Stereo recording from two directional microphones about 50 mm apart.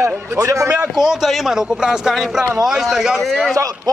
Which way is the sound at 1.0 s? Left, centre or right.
Centre.